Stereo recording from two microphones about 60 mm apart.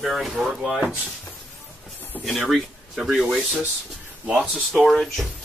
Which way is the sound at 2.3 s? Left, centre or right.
Centre.